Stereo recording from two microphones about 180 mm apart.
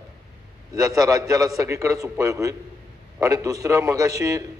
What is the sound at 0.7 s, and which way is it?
A man's voice, 20° right (ahead or behind).